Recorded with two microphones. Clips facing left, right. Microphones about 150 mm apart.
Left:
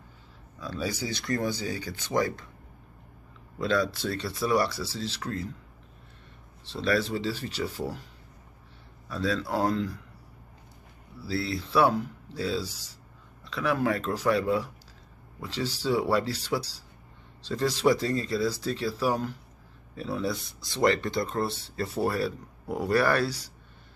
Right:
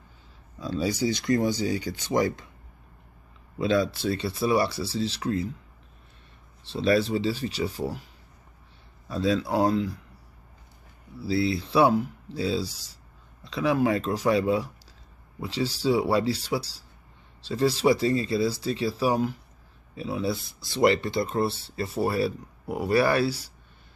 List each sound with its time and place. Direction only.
0.6 s speech: 20° right (ahead or behind)
3.9 s speech: 10° right (ahead or behind)
6.7 s speech: 15° right (ahead or behind)
9.2 s speech: 15° right (ahead or behind)
11.2 s speech: 15° right (ahead or behind)